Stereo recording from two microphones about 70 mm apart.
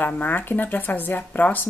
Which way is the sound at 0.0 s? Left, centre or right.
Left.